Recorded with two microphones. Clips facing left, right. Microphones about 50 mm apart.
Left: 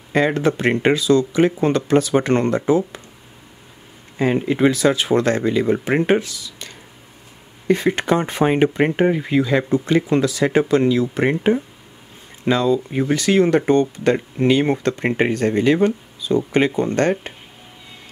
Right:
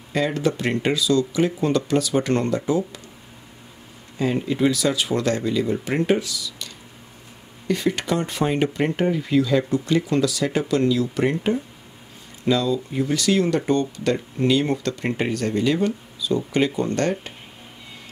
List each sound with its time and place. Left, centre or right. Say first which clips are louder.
0.1 s speech: left 5 dB; left
4.2 s speech: left 4 dB; left